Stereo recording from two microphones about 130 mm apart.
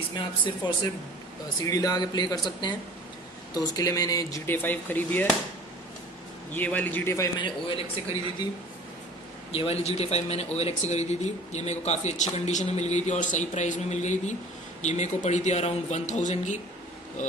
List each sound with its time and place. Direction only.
1.6 s speech: 30° left (ahead or behind)
4.5 s speech: 15° left (ahead or behind)
6.5 s speech: 15° left (ahead or behind)
7.3 s speech: 40° left (ahead or behind)
9.5 s speech: 50° left (ahead or behind); by 17.3 s 75° left (ahead or behind)